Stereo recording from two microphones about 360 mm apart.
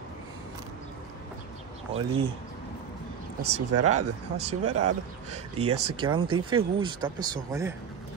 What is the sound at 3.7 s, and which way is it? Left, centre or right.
Speech, right.